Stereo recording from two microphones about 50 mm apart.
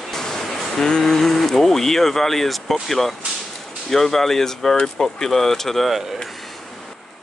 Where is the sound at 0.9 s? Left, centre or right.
Centre.